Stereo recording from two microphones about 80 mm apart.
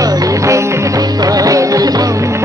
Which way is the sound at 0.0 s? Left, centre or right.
Right.